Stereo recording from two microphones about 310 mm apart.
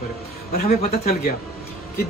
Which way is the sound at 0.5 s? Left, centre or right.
Left.